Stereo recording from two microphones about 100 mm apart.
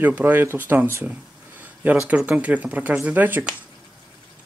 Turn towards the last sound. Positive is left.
turn(degrees=-15)  # may be behind; listen again after turning